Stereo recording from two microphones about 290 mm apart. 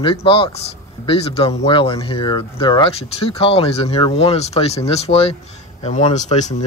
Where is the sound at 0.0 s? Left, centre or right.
Centre.